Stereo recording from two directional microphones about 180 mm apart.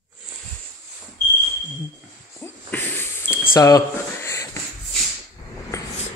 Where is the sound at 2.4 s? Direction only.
10° left (ahead or behind).